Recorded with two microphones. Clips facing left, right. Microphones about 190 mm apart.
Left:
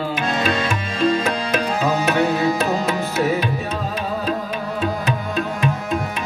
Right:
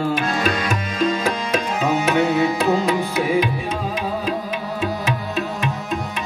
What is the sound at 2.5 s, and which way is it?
Music, 15° right (ahead or behind).